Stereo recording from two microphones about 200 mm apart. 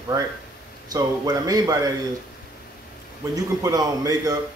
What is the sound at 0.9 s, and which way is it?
Speech, 20° right (ahead or behind).